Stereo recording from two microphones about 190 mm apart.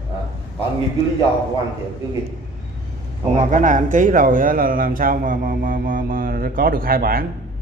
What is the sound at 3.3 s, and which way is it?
Speech, 45° right (ahead or behind).